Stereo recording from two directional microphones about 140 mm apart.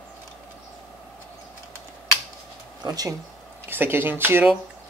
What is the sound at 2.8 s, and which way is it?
Speech, 25° right (ahead or behind).